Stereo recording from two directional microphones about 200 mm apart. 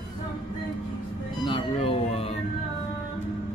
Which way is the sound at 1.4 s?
25° left (ahead or behind).